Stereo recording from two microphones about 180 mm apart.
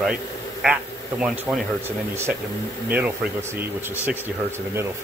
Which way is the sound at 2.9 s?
10° right (ahead or behind).